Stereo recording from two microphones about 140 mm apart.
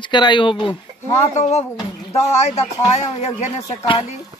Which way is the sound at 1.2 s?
50° left (ahead or behind).